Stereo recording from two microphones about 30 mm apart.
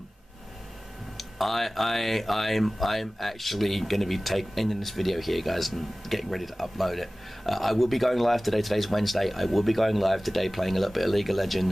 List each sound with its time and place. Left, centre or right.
1.1 s speech: centre